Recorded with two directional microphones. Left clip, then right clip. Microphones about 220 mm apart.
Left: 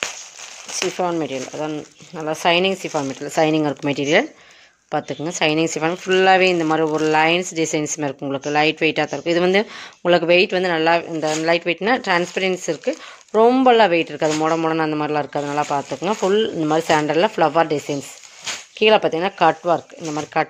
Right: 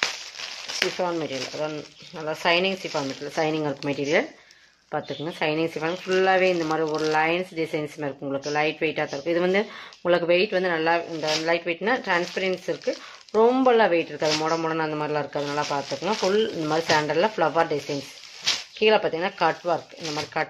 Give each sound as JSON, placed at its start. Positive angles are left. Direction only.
{"t": 0.9, "sound": "speech", "side_deg": 50}